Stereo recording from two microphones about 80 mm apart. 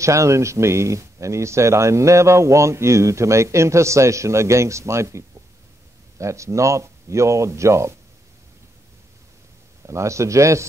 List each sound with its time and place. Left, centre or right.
0.0 s speech: right
9.8 s speech: right